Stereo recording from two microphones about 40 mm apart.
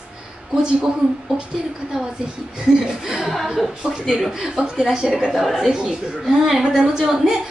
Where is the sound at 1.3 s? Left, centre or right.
Right.